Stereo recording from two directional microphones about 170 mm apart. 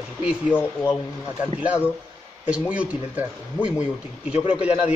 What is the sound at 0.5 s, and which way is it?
Speech, 15° left (ahead or behind).